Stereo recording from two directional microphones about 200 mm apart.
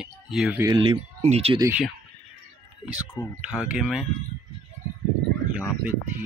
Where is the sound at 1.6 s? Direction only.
10° right (ahead or behind).